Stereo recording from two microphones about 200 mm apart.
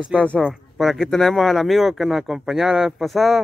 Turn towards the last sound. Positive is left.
turn(degrees=0)  # may be behind; listen again after turning